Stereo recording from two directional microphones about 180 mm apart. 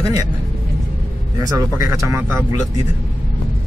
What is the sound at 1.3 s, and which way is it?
Speech, 20° right (ahead or behind).